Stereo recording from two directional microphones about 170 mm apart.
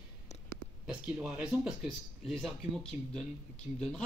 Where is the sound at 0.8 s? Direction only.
5° right (ahead or behind).